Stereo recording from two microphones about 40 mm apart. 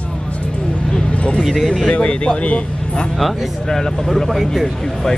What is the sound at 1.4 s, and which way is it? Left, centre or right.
Speech, centre.